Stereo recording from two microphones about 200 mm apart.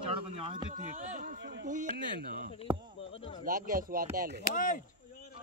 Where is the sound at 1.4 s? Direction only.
55° right (ahead or behind).